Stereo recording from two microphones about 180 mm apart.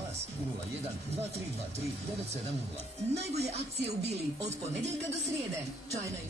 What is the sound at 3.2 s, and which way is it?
Speech, 35° right (ahead or behind).